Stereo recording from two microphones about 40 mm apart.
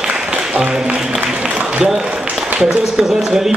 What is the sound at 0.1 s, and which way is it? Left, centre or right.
Applause, right.